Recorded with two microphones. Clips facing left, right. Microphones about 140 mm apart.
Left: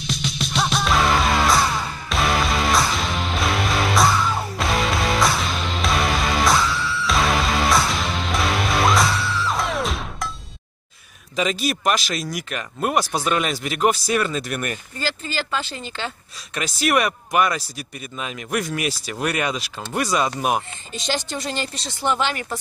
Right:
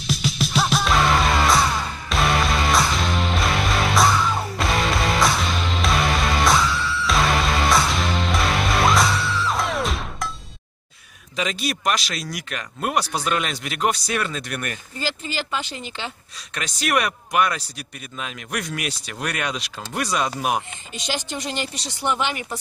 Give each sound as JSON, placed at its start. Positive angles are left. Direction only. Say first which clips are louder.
{"t": 0.0, "sound": "music", "louder": "right 3 dB", "side_deg": 0}
{"t": 11.3, "sound": "speech", "louder": "left 3 dB", "side_deg": 0}
{"t": 15.0, "sound": "speech", "louder": "even", "side_deg": -15}
{"t": 16.5, "sound": "speech", "louder": "left 3 dB", "side_deg": 5}
{"t": 20.9, "sound": "speech", "louder": "left 2 dB", "side_deg": -15}